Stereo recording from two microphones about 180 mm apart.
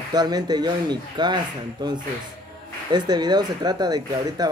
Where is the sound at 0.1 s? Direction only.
20° right (ahead or behind).